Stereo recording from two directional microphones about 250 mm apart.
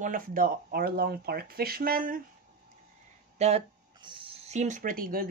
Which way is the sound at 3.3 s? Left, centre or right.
Right.